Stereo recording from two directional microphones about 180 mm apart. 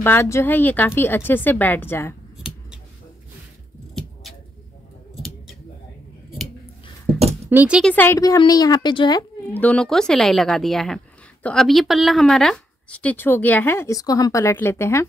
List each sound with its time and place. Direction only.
0.0 s a woman's voice: 15° left (ahead or behind)
3.9 s a sound: centre (ahead or behind)
5.1 s scissors: centre (ahead or behind)
7.4 s speech: 10° right (ahead or behind)
7.8 s a woman's voice: 10° left (ahead or behind)
9.5 s a woman's voice: 10° left (ahead or behind)